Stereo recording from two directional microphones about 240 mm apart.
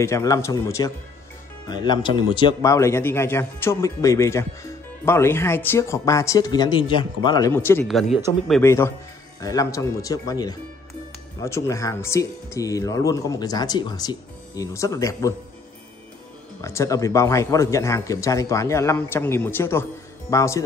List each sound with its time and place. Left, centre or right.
0.0 s a man's voice: centre
16.6 s a man's voice: centre